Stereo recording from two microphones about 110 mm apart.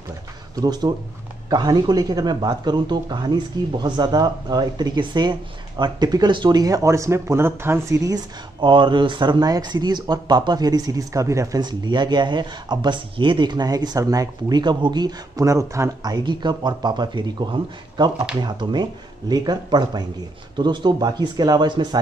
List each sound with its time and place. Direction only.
0.6 s speech: 40° right (ahead or behind)
11.6 s speech: 40° right (ahead or behind)